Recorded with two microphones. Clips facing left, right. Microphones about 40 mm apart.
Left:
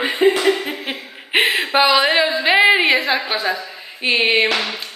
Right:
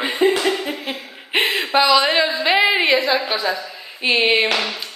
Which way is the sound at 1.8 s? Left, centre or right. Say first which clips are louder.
Even; left.